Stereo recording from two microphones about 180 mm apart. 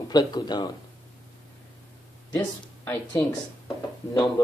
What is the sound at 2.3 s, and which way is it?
Speech, 15° left (ahead or behind).